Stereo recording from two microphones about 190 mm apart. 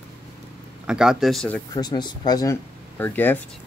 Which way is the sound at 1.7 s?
20° left (ahead or behind).